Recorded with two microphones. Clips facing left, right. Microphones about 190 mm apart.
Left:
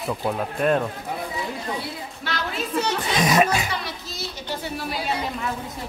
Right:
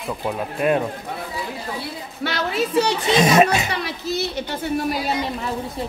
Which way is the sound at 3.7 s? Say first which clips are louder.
Right 7 dB; 65° right (ahead or behind).